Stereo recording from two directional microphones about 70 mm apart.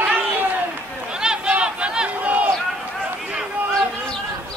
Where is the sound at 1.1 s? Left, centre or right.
Centre.